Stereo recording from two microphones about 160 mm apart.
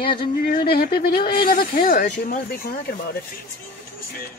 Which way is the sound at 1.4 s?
65° left (ahead or behind).